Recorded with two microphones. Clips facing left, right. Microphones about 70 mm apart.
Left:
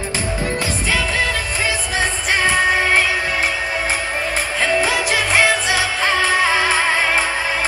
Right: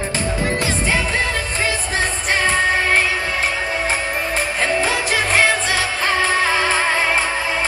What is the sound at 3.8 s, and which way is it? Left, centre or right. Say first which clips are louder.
Music: even; right.